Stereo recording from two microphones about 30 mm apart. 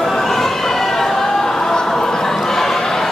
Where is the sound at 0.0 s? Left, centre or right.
Centre.